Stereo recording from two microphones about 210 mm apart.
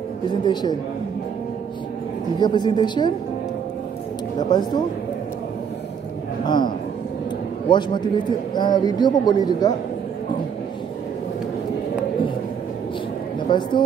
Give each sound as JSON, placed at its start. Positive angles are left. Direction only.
{"t": 0.5, "sound": "a man's voice", "side_deg": 20}
{"t": 2.4, "sound": "a man's voice", "side_deg": 20}
{"t": 4.4, "sound": "a man's voice", "side_deg": 20}
{"t": 6.4, "sound": "a man's voice", "side_deg": 20}
{"t": 7.7, "sound": "a man's voice", "side_deg": 20}
{"t": 13.5, "sound": "a man's voice", "side_deg": 20}